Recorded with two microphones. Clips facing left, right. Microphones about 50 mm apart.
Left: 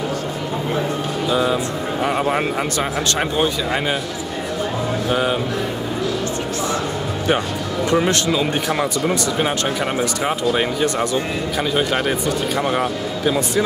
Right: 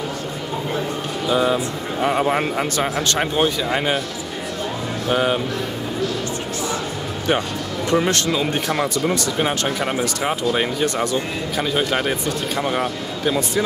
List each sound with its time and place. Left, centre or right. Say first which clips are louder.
1.3 s speech: right 1 dB; centre
2.0 s speech: right 1 dB; centre
3.7 s speech: even; centre
5.1 s speech: right 2 dB; centre
7.9 s a man's voice: left 1 dB; centre